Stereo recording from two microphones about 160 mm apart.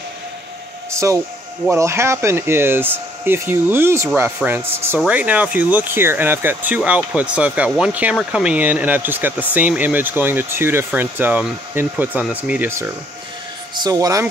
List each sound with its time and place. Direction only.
0.9 s speech: 20° right (ahead or behind)